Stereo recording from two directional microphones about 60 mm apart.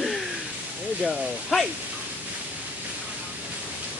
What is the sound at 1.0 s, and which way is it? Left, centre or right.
Speech, centre.